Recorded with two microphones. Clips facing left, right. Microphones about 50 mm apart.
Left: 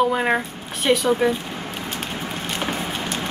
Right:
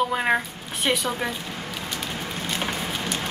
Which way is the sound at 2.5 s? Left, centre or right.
Left.